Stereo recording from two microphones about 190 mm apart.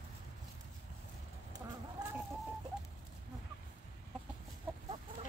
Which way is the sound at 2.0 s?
20° right (ahead or behind).